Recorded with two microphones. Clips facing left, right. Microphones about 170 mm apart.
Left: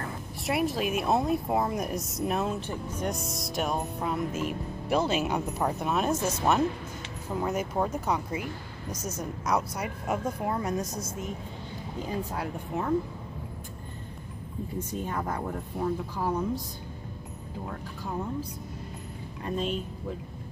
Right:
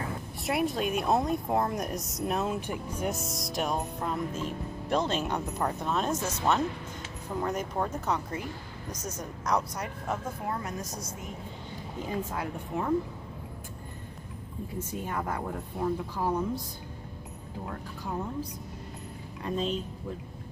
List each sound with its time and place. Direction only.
0.5 s speech: centre (ahead or behind)
2.6 s music: 10° right (ahead or behind); by 10.9 s 15° left (ahead or behind)
12.7 s speech: 25° left (ahead or behind)
15.3 s a woman's voice: centre (ahead or behind)
19.4 s speech: 5° left (ahead or behind)